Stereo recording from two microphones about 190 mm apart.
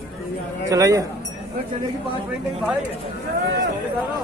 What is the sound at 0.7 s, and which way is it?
Speech, 15° right (ahead or behind).